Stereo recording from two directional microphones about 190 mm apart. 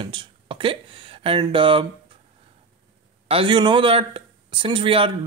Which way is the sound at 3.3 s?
25° right (ahead or behind).